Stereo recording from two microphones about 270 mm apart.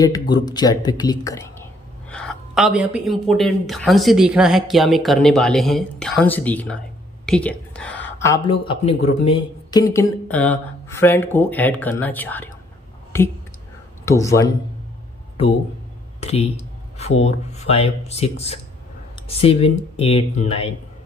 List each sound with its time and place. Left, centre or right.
0.0 s speech: centre
16.2 s speech: left
17.6 s speech: left